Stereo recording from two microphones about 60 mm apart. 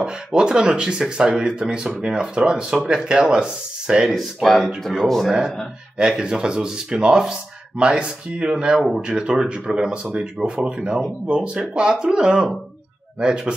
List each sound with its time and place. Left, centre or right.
0.0 s speech: centre
4.1 s speech: centre
5.9 s speech: centre